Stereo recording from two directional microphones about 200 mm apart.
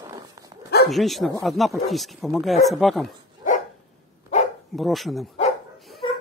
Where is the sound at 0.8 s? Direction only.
Centre (ahead or behind).